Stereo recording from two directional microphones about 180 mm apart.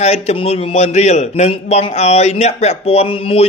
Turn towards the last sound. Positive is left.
turn(degrees=30)  # may be behind; listen again after turning